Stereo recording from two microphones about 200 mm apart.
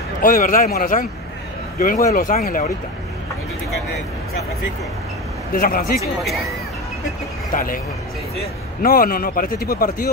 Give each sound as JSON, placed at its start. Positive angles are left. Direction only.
{"t": 0.2, "sound": "speech", "side_deg": 45}
{"t": 5.5, "sound": "speech", "side_deg": 45}
{"t": 5.9, "sound": "speech", "side_deg": 0}
{"t": 7.5, "sound": "speech", "side_deg": 45}